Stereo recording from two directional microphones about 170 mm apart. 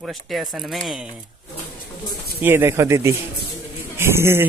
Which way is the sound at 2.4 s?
15° right (ahead or behind).